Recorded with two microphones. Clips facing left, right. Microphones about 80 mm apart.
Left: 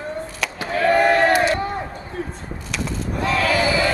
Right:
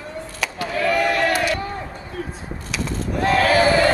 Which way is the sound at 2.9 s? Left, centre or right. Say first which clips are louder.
Right 4 dB; right.